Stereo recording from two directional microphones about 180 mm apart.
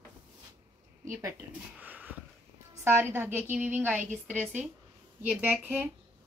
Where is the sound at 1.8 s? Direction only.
10° right (ahead or behind).